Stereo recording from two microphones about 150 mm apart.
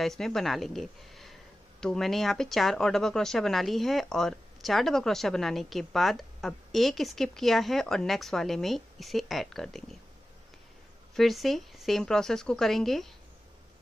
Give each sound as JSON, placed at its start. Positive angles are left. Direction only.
{"t": 0.0, "sound": "speech", "side_deg": 0}
{"t": 11.1, "sound": "speech", "side_deg": 0}